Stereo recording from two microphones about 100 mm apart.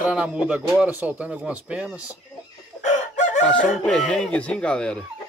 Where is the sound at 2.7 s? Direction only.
30° left (ahead or behind).